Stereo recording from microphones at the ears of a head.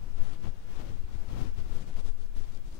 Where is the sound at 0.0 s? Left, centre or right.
Left.